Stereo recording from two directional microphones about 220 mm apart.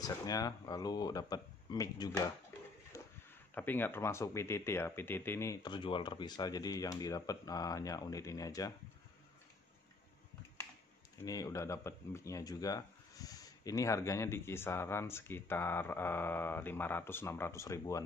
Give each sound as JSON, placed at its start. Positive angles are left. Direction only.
{"t": 0.0, "sound": "speech", "side_deg": 15}
{"t": 2.9, "sound": "a sound", "side_deg": 15}
{"t": 3.5, "sound": "speech", "side_deg": 10}
{"t": 11.2, "sound": "speech", "side_deg": 15}